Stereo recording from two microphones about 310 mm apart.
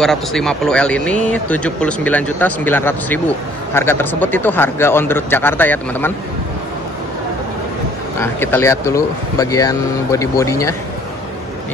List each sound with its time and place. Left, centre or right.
0.0 s speech: centre
8.2 s speech: centre